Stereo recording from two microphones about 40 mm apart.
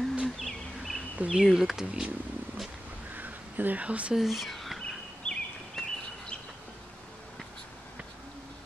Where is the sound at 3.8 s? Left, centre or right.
Right.